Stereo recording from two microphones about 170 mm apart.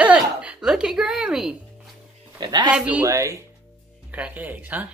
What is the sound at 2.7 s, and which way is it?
A woman's voice, 10° right (ahead or behind).